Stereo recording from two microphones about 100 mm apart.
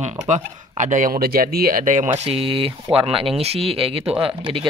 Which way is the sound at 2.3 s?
65° right (ahead or behind).